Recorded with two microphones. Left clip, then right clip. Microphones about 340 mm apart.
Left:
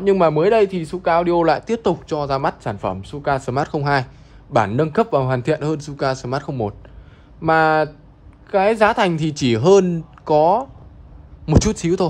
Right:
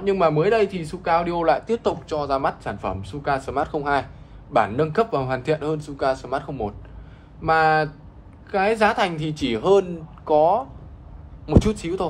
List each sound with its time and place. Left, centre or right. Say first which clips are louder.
0.0 s a man's voice: left 4 dB; left